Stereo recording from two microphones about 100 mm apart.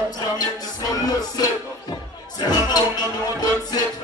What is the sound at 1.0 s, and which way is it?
Music, 40° left (ahead or behind).